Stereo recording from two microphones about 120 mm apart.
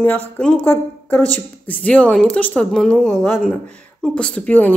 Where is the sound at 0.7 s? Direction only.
15° left (ahead or behind).